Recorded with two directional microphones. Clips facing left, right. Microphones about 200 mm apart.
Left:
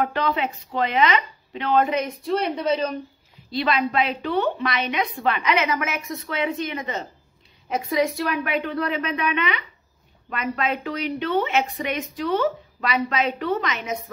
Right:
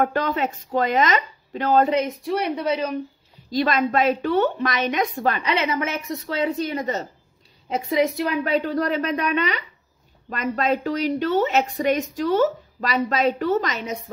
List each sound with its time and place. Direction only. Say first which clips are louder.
0.0 s speech: right 2 dB; 45° right (ahead or behind)
2.0 s a woman's voice: even; 15° right (ahead or behind)
3.4 s a woman's voice: right 2 dB; 45° right (ahead or behind)
7.7 s a woman's voice: right 2 dB; 25° right (ahead or behind)
8.5 s a woman's voice: right 3 dB; 35° right (ahead or behind)